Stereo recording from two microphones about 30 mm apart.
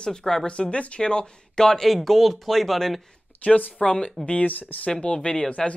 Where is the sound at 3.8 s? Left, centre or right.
Left.